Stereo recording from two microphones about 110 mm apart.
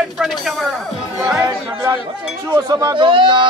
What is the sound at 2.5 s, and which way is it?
Speech, 35° right (ahead or behind).